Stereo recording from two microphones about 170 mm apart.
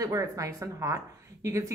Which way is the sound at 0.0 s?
20° right (ahead or behind).